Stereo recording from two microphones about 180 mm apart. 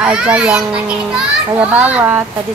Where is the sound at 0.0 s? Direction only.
5° right (ahead or behind).